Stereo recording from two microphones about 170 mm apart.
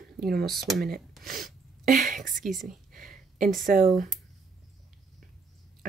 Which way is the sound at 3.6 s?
50° right (ahead or behind).